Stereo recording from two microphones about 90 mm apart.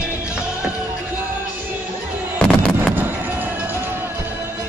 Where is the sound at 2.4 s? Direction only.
10° left (ahead or behind).